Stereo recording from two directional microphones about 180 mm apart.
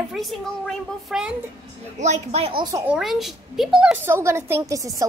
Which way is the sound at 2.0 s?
40° right (ahead or behind).